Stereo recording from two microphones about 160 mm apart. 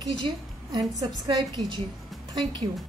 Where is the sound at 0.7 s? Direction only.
25° right (ahead or behind).